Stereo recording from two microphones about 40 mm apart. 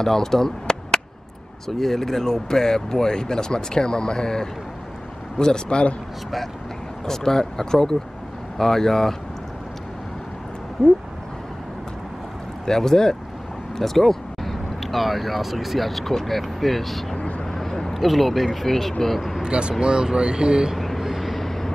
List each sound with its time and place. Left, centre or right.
0.0 s speech: centre
7.1 s speech: centre
10.8 s speech: centre
12.6 s speech: centre
17.1 s vehicle: left
17.5 s a sound: centre
17.9 s speech: centre
19.4 s speech: right
20.7 s vehicle: centre
21.0 s vehicle: centre